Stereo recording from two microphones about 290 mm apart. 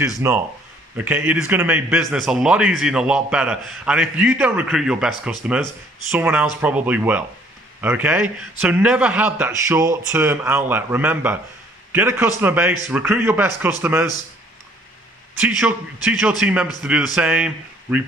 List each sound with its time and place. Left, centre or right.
0.2 s a man's voice: centre
15.3 s speech: centre